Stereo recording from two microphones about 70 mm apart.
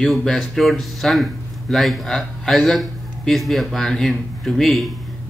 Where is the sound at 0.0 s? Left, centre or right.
Centre.